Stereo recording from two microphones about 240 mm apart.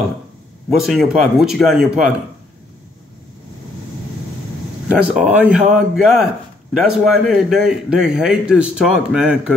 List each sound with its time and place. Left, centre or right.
0.7 s a man's voice: centre
5.1 s a man's voice: centre